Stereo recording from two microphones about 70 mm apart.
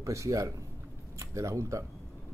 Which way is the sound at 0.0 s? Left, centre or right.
Right.